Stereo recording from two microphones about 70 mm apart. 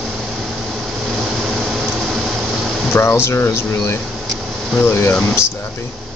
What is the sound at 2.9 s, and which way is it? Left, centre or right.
Speech, left.